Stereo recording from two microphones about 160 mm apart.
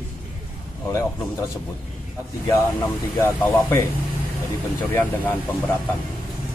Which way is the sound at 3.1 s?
15° left (ahead or behind).